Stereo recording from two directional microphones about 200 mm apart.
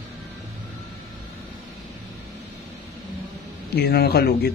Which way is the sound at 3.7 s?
50° left (ahead or behind).